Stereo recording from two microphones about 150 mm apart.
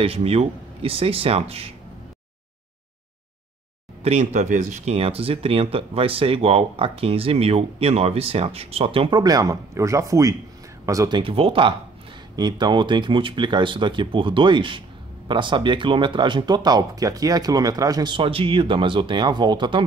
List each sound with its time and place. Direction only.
0.0 s speech: 40° right (ahead or behind)
4.0 s speech: 50° right (ahead or behind); by 19.8 s 30° right (ahead or behind)